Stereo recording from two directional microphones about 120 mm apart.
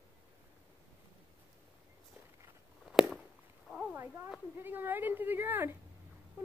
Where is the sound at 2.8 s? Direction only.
Centre (ahead or behind).